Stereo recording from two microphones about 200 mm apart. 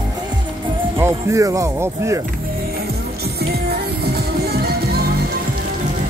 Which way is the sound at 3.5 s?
50° right (ahead or behind).